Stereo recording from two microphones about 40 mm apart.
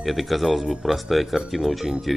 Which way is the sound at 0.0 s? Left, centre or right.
Centre.